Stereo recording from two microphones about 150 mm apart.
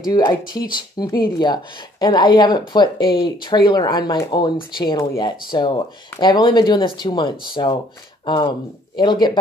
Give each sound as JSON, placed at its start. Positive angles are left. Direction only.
{"t": 0.0, "sound": "speech", "side_deg": 25}
{"t": 0.5, "sound": "speech", "side_deg": 70}
{"t": 0.7, "sound": "speech", "side_deg": 25}